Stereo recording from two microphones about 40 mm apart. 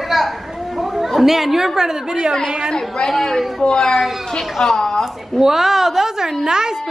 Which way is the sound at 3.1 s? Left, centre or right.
Centre.